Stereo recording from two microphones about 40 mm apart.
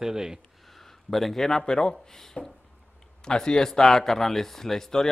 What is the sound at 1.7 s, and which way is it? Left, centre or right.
Speech, left.